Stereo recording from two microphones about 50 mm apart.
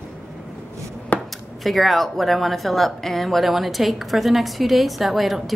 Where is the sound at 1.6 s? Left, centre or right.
Centre.